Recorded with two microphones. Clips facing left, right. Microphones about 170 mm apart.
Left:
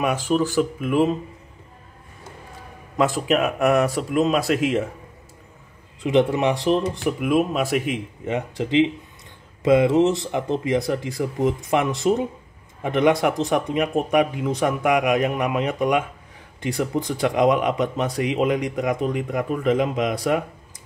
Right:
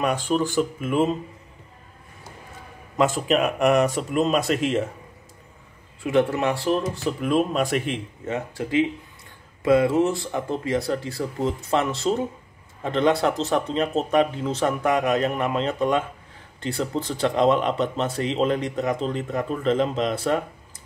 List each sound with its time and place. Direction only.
0.0 s speech: 5° left (ahead or behind)
3.0 s speech: centre (ahead or behind)
6.0 s speech: 20° left (ahead or behind)
8.3 s speech: 20° left (ahead or behind)